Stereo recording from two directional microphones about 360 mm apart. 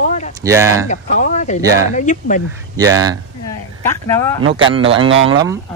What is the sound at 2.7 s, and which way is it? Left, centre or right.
Speech, centre.